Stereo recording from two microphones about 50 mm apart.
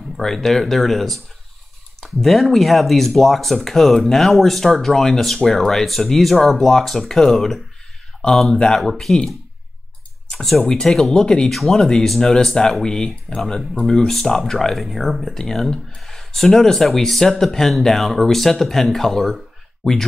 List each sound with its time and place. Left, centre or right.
0.2 s speech: centre
10.3 s speech: centre
13.6 s speech: centre